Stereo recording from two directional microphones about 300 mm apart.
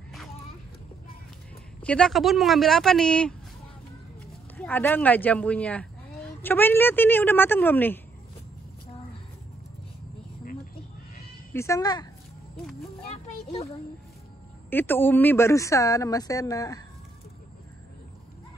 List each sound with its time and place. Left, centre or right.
1.8 s speech: centre
4.6 s speech: centre
11.5 s speech: centre
13.1 s a sound: centre
14.7 s speech: centre